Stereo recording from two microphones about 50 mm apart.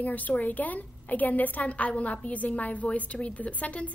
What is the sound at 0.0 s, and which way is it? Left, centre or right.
A woman's voice, left.